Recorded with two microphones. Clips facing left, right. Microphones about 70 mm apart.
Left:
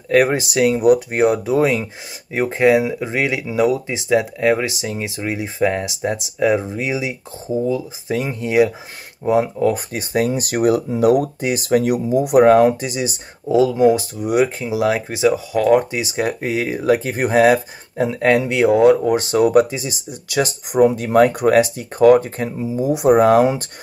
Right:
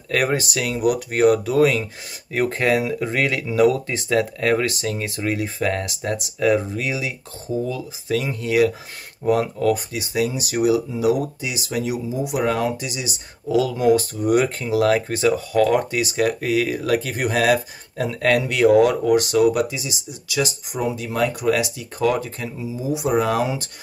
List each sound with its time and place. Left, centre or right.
0.1 s speech: left
9.9 s speech: left